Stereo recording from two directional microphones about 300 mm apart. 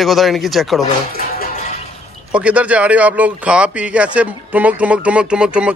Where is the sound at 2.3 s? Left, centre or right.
Centre.